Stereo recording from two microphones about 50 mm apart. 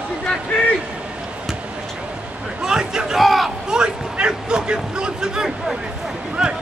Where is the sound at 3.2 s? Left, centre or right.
Centre.